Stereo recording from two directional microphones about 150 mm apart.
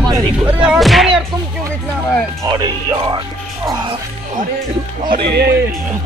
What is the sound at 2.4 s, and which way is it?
Speech, 25° right (ahead or behind).